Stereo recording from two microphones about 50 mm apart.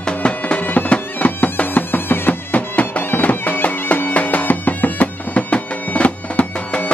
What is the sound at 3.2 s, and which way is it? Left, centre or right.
Bagpipes, left.